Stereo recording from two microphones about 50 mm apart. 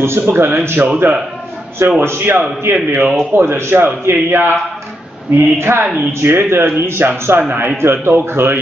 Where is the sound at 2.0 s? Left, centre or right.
Right.